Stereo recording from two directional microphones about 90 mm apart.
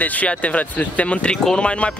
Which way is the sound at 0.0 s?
15° left (ahead or behind).